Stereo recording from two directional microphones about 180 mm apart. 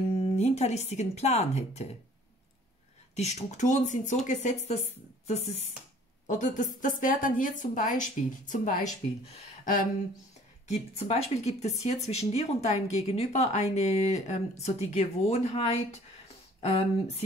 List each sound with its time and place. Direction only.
0.2 s a woman's voice: 40° left (ahead or behind)
3.2 s a woman's voice: 40° left (ahead or behind)
10.7 s a woman's voice: 35° left (ahead or behind)
16.6 s a woman's voice: 30° left (ahead or behind)